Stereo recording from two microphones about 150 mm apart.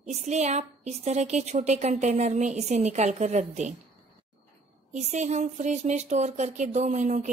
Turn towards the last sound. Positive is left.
turn(degrees=-55)  # may be behind; listen again after turning